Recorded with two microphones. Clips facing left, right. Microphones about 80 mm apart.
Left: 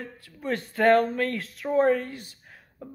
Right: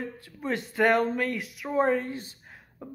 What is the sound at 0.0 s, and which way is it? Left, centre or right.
Speech, right.